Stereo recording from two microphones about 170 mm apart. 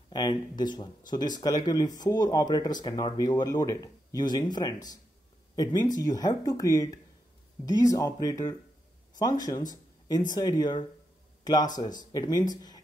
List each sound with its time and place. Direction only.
0.1 s speech: 25° left (ahead or behind)